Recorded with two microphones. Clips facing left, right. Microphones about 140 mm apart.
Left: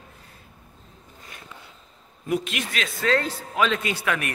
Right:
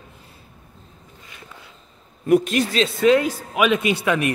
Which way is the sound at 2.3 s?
45° right (ahead or behind).